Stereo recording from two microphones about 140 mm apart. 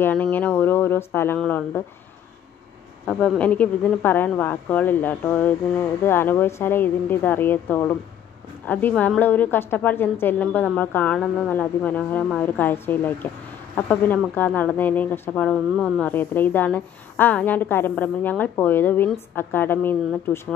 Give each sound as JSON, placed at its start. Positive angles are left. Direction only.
{"t": 0.0, "sound": "speech", "side_deg": 10}
{"t": 3.1, "sound": "speech", "side_deg": 5}